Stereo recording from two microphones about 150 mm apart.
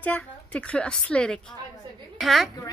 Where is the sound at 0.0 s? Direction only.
10° left (ahead or behind).